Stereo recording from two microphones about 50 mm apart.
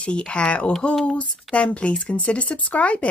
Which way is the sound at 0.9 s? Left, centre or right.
Centre.